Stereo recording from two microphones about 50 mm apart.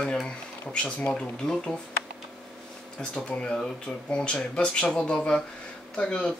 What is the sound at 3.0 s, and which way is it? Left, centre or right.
Speech, left.